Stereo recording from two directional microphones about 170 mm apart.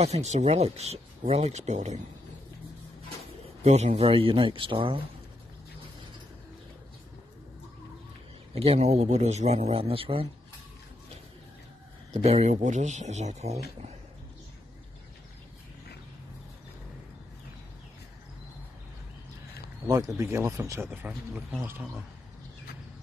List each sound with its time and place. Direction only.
0.0 s speech: 40° right (ahead or behind)
3.6 s speech: 40° right (ahead or behind)
8.5 s speech: 40° right (ahead or behind)
12.1 s speech: 40° right (ahead or behind)
20.2 s speech: 15° right (ahead or behind)